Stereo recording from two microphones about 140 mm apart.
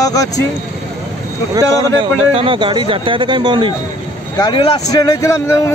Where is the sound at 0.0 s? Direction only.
25° left (ahead or behind).